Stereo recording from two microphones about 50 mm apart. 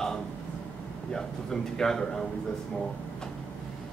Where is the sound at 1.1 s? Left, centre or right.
Centre.